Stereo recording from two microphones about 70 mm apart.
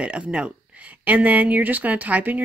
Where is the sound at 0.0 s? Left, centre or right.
Centre.